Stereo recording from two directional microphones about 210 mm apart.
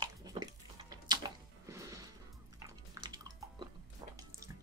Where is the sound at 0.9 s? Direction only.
20° right (ahead or behind).